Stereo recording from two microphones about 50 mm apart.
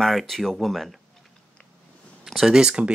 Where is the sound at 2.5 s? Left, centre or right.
Centre.